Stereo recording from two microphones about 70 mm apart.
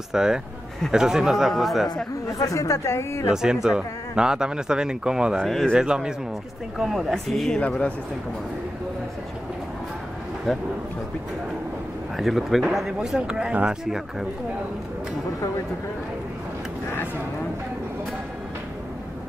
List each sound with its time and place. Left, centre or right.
0.1 s speech: centre
2.3 s speech: left
3.6 s speech: centre
5.4 s speech: centre
5.7 s speech: centre
7.5 s speech: centre
12.2 s speech: centre